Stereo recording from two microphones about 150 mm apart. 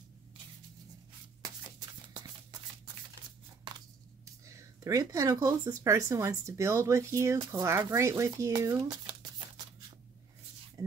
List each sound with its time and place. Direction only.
4.5 s speech: 20° right (ahead or behind)